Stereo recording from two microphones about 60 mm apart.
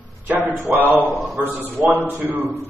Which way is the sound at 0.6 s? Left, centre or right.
Right.